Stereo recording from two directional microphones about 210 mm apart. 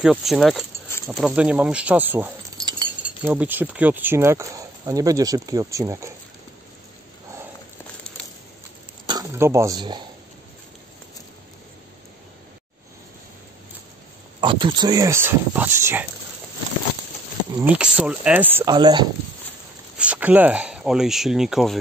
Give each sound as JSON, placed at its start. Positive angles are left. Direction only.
{"t": 0.0, "sound": "speech", "side_deg": 0}
{"t": 9.0, "sound": "speech", "side_deg": -20}
{"t": 14.4, "sound": "speech", "side_deg": -25}
{"t": 17.7, "sound": "speech", "side_deg": -5}
{"t": 18.8, "sound": "speech", "side_deg": -20}
{"t": 20.0, "sound": "speech", "side_deg": -5}